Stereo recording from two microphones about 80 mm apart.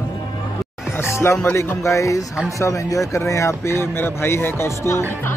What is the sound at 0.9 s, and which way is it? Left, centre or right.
Music, left.